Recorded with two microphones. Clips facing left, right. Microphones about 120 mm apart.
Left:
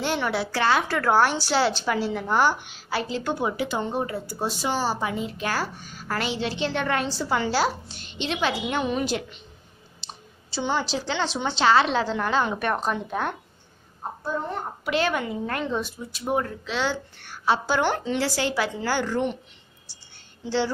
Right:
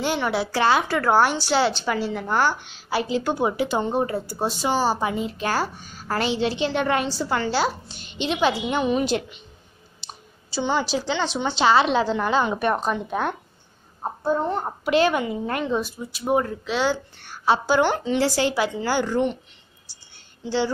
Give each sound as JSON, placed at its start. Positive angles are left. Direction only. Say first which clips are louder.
{"t": 0.0, "sound": "a woman's voice", "louder": "right 2 dB", "side_deg": -10}
{"t": 1.4, "sound": "a woman's voice", "louder": "right 2 dB", "side_deg": 5}
{"t": 2.9, "sound": "a woman's voice", "louder": "right 4 dB", "side_deg": -10}
{"t": 3.3, "sound": "speech", "louder": "right 4 dB", "side_deg": -25}
{"t": 7.1, "sound": "a woman's voice", "louder": "right 1 dB", "side_deg": 0}
{"t": 8.2, "sound": "a woman's voice", "louder": "right 4 dB", "side_deg": -10}
{"t": 10.0, "sound": "clicking", "louder": "right 1 dB", "side_deg": -5}
{"t": 10.5, "sound": "a woman's voice", "louder": "right 3 dB", "side_deg": 0}
{"t": 11.6, "sound": "a woman's voice", "louder": "right 2 dB", "side_deg": -15}
{"t": 14.9, "sound": "a woman's voice", "louder": "right 5 dB", "side_deg": -20}
{"t": 18.2, "sound": "speech", "louder": "right 5 dB", "side_deg": -20}
{"t": 18.8, "sound": "a woman's voice", "louder": "right 3 dB", "side_deg": -5}
{"t": 20.4, "sound": "a woman's voice", "louder": "right 1 dB", "side_deg": 0}